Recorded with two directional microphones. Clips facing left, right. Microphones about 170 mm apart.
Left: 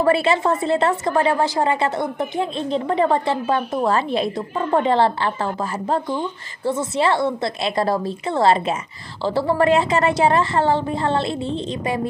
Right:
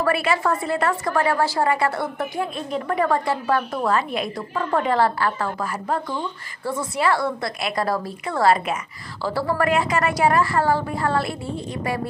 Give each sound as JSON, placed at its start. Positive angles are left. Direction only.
{"t": 0.0, "sound": "a woman's voice", "side_deg": 25}